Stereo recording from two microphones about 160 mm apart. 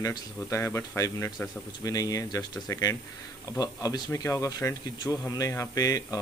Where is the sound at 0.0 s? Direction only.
20° left (ahead or behind).